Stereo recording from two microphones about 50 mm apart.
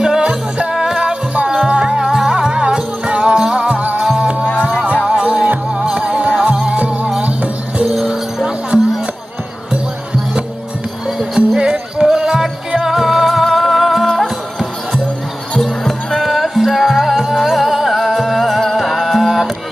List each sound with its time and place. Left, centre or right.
0.0 s music: centre
5.9 s music: centre
7.8 s music: centre
11.1 s music: centre
15.6 s music: centre